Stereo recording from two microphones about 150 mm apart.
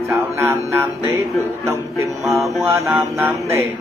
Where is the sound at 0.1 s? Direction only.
15° right (ahead or behind).